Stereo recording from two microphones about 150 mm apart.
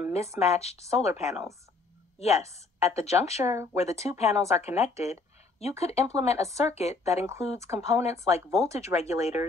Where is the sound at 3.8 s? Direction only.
45° left (ahead or behind).